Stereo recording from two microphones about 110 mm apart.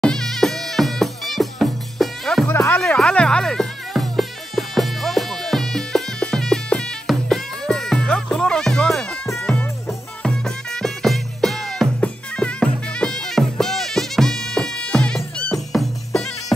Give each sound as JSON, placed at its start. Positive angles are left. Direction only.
{"t": 0.0, "sound": "music", "side_deg": 5}
{"t": 2.4, "sound": "music", "side_deg": 20}
{"t": 2.8, "sound": "music", "side_deg": 5}